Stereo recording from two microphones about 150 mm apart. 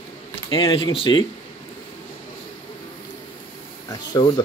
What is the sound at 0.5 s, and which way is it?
Speech, 35° left (ahead or behind).